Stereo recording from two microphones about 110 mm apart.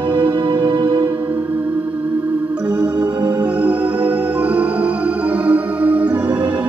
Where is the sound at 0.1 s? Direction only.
50° right (ahead or behind).